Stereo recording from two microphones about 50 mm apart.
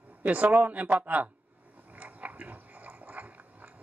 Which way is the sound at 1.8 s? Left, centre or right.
Right.